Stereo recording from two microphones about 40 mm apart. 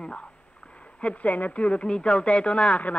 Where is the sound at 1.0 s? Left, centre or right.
Left.